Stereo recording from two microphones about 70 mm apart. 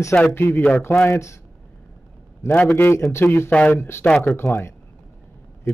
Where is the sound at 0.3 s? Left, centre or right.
Left.